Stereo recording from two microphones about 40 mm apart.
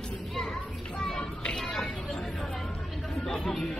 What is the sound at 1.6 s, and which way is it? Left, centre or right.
Speech, centre.